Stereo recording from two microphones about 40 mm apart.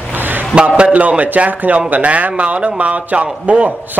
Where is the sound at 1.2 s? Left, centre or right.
Right.